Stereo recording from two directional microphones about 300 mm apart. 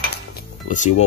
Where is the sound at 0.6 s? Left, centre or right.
Left.